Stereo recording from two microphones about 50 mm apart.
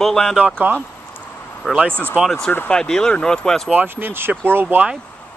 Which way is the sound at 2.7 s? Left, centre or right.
Centre.